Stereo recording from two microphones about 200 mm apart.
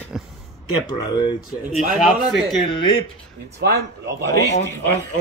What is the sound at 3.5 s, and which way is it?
Speech, 55° right (ahead or behind).